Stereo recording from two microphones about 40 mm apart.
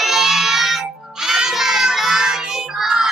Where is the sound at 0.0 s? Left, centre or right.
Centre.